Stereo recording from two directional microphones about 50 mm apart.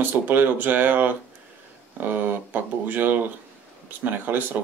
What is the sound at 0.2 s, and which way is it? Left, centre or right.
Speech, right.